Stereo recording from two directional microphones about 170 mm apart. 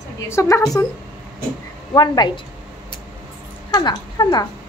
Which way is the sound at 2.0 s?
25° left (ahead or behind).